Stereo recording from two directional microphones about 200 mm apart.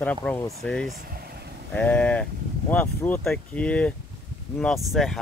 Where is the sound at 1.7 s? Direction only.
5° left (ahead or behind).